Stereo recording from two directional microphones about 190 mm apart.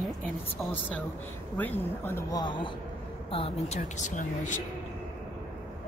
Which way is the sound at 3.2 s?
30° left (ahead or behind).